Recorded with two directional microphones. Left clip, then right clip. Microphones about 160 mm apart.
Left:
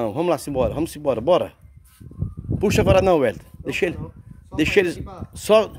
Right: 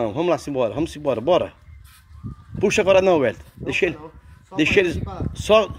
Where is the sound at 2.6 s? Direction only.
30° left (ahead or behind).